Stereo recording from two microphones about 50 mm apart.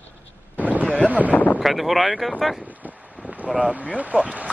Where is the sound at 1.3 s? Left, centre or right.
Left.